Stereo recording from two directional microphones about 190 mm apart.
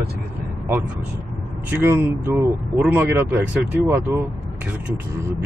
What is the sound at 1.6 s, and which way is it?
Speech, 10° right (ahead or behind).